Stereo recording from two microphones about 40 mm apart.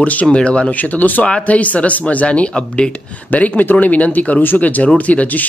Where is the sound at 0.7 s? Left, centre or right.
Left.